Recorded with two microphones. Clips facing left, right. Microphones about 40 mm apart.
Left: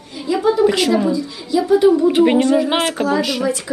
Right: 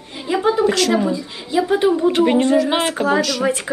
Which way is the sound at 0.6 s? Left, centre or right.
Centre.